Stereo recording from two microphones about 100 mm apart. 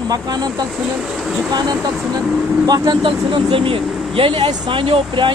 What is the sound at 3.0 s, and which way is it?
Speech, 60° right (ahead or behind).